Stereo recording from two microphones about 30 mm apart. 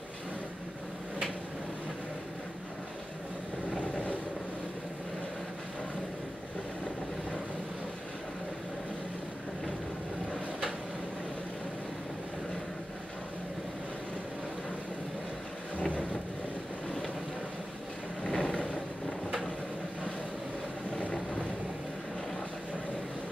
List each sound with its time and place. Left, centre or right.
15.8 s boat: left
18.2 s vehicle: left